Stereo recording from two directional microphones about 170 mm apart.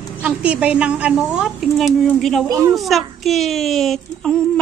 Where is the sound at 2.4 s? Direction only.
20° right (ahead or behind).